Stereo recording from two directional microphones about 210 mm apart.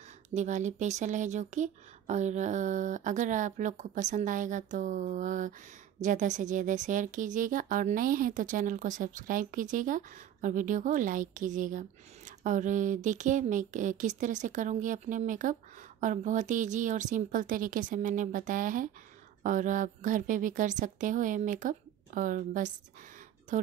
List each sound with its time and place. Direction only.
0.3 s speech: 35° right (ahead or behind)